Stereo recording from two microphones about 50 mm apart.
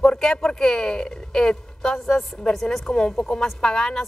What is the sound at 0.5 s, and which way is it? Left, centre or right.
Speech, centre.